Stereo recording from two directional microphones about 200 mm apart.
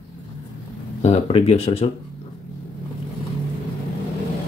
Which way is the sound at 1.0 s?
30° left (ahead or behind).